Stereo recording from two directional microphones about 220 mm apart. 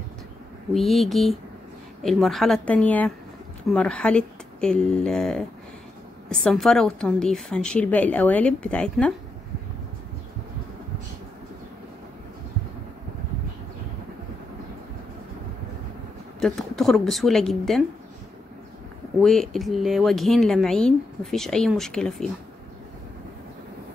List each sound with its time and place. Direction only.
0.7 s speech: centre (ahead or behind)
16.3 s speech: centre (ahead or behind)
19.2 s speech: centre (ahead or behind)